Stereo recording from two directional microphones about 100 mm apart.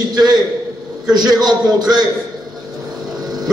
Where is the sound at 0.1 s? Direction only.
45° right (ahead or behind).